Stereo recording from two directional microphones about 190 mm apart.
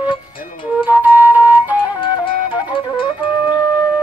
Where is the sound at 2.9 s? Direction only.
25° left (ahead or behind).